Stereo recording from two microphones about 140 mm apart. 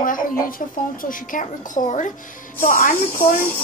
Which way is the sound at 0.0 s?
80° left.